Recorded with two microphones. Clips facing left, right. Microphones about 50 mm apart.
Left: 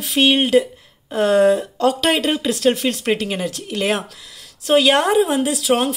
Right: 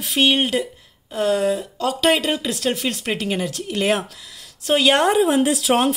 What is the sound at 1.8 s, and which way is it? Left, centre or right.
A woman's voice, centre.